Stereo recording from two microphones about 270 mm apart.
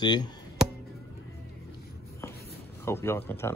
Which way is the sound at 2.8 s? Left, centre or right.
Centre.